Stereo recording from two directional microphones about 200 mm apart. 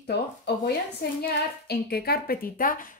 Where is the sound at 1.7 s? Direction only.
50° left (ahead or behind).